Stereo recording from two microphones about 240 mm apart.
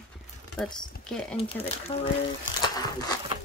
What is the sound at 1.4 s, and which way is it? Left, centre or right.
Speech, left.